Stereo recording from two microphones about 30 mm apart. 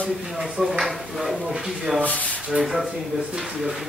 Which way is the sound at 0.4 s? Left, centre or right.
Centre.